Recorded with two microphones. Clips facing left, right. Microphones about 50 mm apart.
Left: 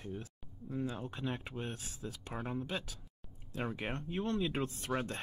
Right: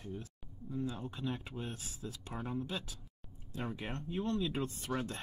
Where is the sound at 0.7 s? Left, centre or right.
Left.